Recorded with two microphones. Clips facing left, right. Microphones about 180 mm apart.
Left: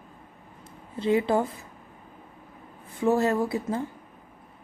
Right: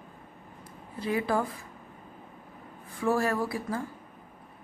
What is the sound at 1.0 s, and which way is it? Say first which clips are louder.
Speech: left 5 dB; 25° left (ahead or behind).